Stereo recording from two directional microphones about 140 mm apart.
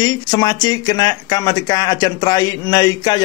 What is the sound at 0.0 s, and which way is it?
Speech, 30° left (ahead or behind).